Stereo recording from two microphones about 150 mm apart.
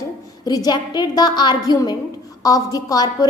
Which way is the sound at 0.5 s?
30° left (ahead or behind).